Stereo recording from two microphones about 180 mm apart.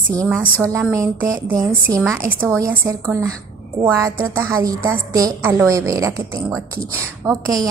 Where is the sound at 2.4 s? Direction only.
15° right (ahead or behind).